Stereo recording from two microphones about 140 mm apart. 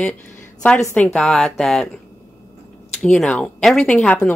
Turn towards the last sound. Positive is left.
turn(degrees=10)  # may be behind; listen again after turning